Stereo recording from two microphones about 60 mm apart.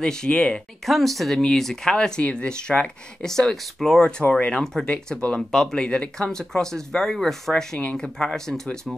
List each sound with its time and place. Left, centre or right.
0.0 s speech: centre
0.8 s speech: centre
4.2 s speech: left